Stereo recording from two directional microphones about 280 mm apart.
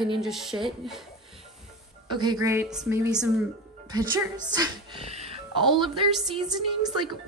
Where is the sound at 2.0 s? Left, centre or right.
Centre.